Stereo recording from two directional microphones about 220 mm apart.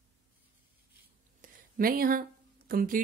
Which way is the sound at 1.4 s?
40° right (ahead or behind).